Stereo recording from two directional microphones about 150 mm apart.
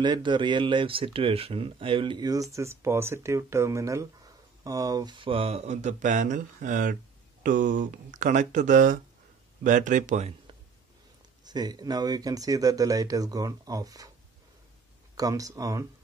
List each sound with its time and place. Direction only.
0.0 s speech: 30° right (ahead or behind); by 10.5 s 45° right (ahead or behind)
11.4 s speech: 25° right (ahead or behind)
15.1 s speech: 25° right (ahead or behind)